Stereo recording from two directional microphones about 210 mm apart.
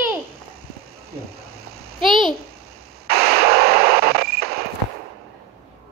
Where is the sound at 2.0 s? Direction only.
25° right (ahead or behind).